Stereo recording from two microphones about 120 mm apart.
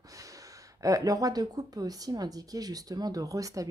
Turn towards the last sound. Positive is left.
turn(degrees=-30)  # may be behind; listen again after turning